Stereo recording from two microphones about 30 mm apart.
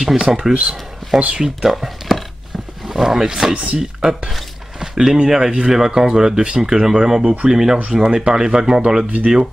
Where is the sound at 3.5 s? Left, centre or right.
Right.